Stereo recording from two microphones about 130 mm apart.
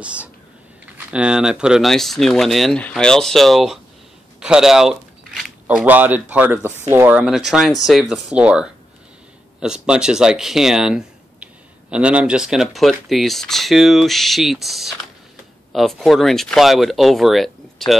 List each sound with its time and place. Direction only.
0.0 s whispering: 10° right (ahead or behind)
0.8 s speech: 10° right (ahead or behind)